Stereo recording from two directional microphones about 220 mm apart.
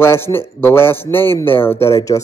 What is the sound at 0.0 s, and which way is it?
A woman's voice, 10° left (ahead or behind).